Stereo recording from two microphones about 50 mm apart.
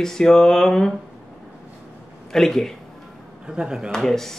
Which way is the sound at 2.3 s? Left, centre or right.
Centre.